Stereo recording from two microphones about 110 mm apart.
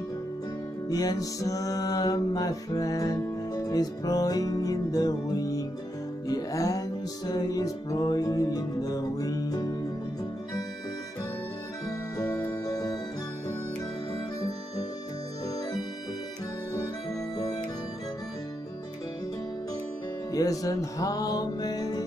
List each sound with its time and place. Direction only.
0.8 s music: 35° left (ahead or behind)
12.2 s music: 30° left (ahead or behind)
20.3 s music: 30° left (ahead or behind)